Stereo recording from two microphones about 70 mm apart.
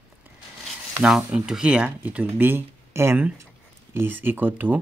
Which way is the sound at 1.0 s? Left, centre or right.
Centre.